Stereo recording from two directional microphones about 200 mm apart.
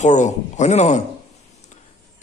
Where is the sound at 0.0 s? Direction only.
35° left (ahead or behind).